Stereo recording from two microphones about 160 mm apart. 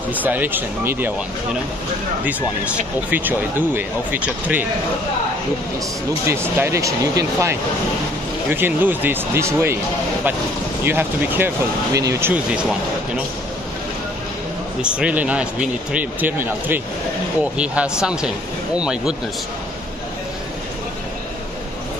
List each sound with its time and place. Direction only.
0.1 s speech: 10° right (ahead or behind)
3.1 s speech: 10° right (ahead or behind)
6.2 s speech: 15° right (ahead or behind)
10.8 s speech: 15° right (ahead or behind)
14.8 s speech: 5° right (ahead or behind)